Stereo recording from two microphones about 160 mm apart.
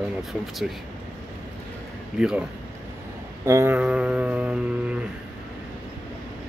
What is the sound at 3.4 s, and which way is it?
Speech, 15° right (ahead or behind).